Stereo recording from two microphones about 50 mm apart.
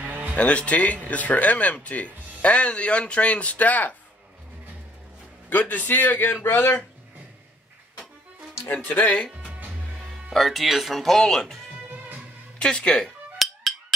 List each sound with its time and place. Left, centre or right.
0.4 s speech: left
5.5 s a man's voice: left
8.8 s speech: left
10.3 s speech: centre
12.5 s speech: centre
13.4 s music: centre